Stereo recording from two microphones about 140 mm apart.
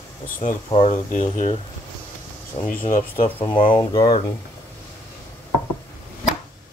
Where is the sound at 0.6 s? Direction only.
45° left (ahead or behind).